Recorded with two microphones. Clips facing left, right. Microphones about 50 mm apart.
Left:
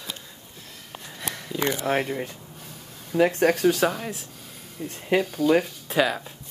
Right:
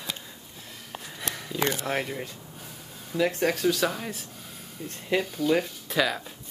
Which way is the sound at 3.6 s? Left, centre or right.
Left.